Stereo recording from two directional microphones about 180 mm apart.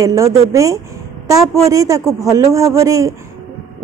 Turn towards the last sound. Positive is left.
turn(degrees=-20)  # may be behind; listen again after turning